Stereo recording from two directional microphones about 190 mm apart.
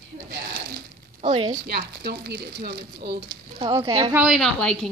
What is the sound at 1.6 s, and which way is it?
Speech, 55° right (ahead or behind).